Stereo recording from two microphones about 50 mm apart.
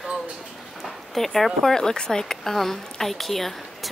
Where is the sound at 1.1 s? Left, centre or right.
Centre.